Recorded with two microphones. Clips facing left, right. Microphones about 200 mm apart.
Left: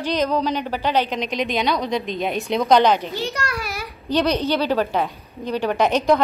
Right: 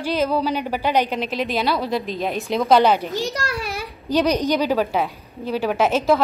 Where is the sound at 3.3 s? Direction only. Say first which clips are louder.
Right 1 dB; 30° right (ahead or behind).